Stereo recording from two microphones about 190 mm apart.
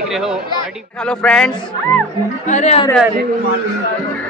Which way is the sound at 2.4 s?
40° left (ahead or behind).